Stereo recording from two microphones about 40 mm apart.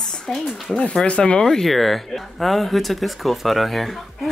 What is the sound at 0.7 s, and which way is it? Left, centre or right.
Speech, left.